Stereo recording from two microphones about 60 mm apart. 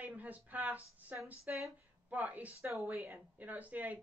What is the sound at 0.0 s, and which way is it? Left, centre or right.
Speech, right.